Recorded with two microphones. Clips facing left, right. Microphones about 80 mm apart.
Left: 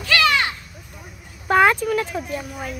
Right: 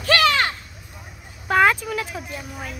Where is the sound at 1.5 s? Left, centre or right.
Centre.